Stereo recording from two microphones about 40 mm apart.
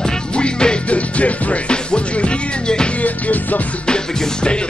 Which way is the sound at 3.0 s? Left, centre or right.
Left.